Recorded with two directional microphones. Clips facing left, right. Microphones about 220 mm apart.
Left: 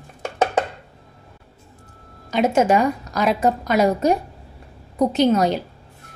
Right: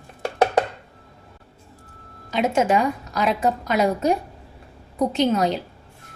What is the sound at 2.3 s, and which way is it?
A woman's voice, 45° left (ahead or behind).